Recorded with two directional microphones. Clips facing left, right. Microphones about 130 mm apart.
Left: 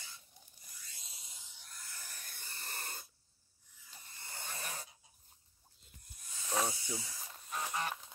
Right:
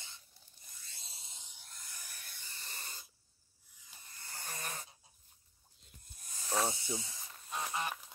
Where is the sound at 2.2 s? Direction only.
50° left (ahead or behind).